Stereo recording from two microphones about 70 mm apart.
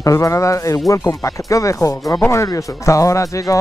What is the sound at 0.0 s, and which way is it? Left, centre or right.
Speech, left.